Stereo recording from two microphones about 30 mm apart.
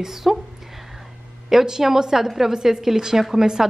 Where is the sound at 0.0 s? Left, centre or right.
Centre.